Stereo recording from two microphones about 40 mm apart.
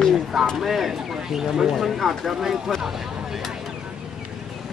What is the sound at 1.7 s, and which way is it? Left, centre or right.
Speech, centre.